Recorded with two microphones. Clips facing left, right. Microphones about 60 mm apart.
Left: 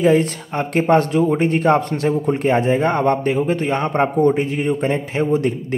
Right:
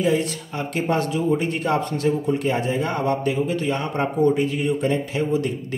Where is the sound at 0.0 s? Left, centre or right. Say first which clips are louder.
Left 6 dB; left.